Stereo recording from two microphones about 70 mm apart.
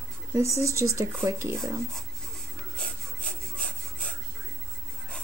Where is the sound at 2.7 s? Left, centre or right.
Centre.